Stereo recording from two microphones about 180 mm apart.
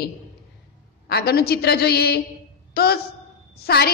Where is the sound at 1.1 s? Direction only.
60° left (ahead or behind).